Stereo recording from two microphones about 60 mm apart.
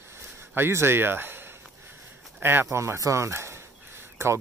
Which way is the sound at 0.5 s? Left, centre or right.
Right.